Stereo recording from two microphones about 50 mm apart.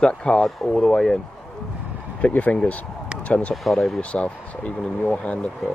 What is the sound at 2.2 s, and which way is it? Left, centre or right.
Speech, left.